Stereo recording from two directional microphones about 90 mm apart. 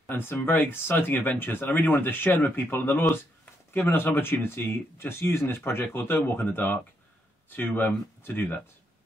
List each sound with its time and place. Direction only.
0.1 s speech: 20° left (ahead or behind)